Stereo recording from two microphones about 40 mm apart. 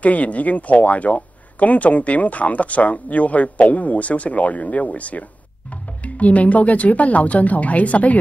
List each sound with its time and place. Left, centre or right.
0.0 s speech: left